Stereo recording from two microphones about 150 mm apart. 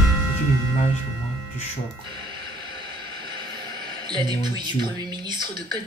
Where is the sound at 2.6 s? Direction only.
30° right (ahead or behind).